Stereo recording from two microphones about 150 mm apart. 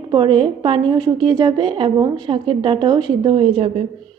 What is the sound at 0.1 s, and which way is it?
A woman's voice, 35° right (ahead or behind).